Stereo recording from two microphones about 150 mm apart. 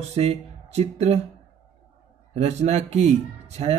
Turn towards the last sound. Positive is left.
turn(degrees=-45)  # may be behind; listen again after turning